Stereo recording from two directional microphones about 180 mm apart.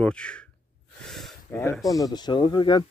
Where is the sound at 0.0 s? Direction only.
5° left (ahead or behind).